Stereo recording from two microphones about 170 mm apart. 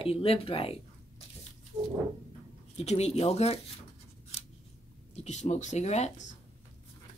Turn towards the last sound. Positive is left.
turn(degrees=45)  # may be behind; listen again after turning